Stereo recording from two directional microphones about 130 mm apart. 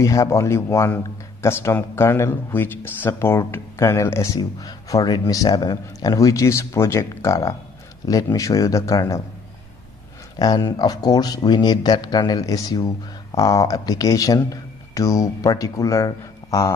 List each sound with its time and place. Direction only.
0.0 s speech: 25° left (ahead or behind)
10.4 s speech: 30° left (ahead or behind)